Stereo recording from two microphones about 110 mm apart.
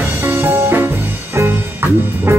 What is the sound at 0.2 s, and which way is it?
Music, 20° right (ahead or behind).